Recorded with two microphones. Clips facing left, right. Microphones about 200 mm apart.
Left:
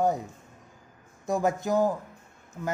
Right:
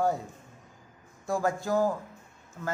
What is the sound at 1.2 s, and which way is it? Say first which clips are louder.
Speech: left 2 dB; 20° left (ahead or behind).